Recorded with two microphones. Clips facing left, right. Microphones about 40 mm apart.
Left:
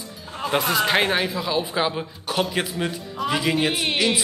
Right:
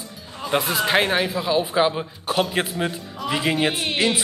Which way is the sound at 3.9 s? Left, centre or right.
Right.